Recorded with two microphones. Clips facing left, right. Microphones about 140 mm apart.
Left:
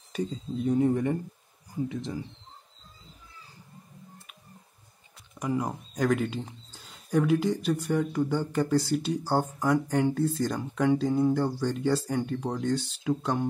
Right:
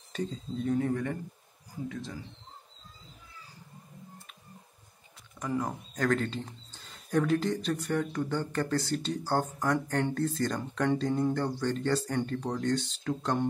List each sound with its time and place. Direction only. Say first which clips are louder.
0.1 s speech: left 3 dB; 10° left (ahead or behind)
5.4 s speech: left 3 dB; 15° left (ahead or behind)